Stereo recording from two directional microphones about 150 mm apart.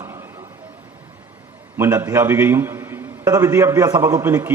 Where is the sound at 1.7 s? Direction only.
15° right (ahead or behind).